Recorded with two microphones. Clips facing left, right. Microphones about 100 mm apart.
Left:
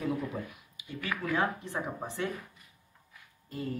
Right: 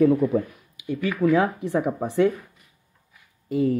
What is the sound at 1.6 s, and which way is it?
Speech, 65° right (ahead or behind).